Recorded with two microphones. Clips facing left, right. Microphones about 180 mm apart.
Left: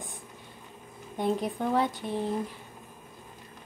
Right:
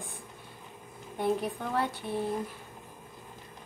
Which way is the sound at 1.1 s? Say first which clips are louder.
Left 1 dB; 15° left (ahead or behind).